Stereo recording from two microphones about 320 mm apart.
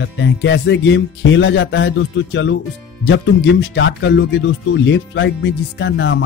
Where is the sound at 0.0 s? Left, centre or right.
Left.